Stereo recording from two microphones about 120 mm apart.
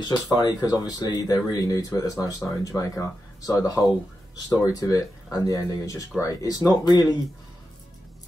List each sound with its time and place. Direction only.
0.0 s speech: 35° left (ahead or behind)